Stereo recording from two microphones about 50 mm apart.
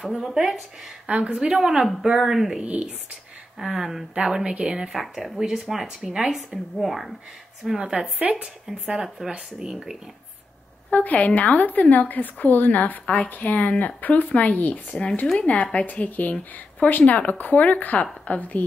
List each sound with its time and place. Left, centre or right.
0.0 s a woman's voice: centre
1.0 s a woman's voice: right
2.6 s speech: right
3.5 s a woman's voice: centre
4.9 s a woman's voice: centre
7.6 s speech: right
8.9 s a woman's voice: centre
10.9 s a woman's voice: left